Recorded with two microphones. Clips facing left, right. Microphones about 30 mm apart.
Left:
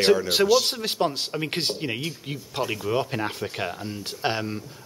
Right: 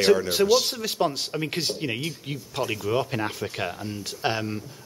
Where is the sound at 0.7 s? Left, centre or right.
Left.